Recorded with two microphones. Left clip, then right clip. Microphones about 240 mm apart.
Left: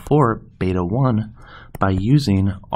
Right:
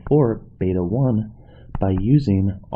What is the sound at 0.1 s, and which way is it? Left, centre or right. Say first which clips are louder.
Speech: left 1 dB; left.